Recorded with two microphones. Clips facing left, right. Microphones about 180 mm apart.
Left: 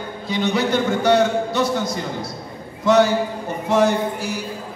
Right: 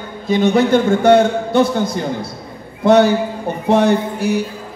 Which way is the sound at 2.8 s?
60° right (ahead or behind).